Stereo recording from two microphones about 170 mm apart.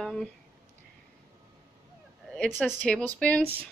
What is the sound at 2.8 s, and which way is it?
Speech, 5° left (ahead or behind).